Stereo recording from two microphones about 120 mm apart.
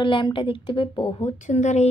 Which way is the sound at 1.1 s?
60° left (ahead or behind).